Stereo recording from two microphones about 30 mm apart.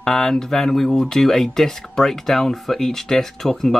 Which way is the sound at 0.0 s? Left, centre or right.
Centre.